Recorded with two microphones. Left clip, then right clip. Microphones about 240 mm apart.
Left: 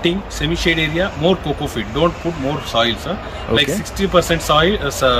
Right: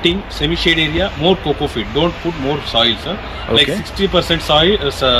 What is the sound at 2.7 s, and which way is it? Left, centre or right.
Speech, centre.